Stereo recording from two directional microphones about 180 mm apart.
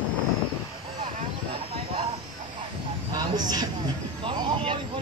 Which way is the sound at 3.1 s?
25° right (ahead or behind).